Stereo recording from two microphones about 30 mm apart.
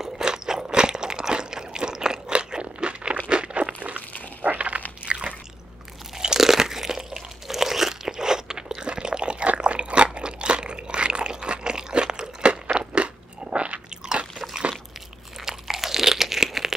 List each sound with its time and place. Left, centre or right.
0.2 s crunch: right
3.3 s a sound: right
4.6 s crunch: right
5.0 s biting: right
6.1 s crunch: centre; by 13.7 s right
15.4 s crunch: centre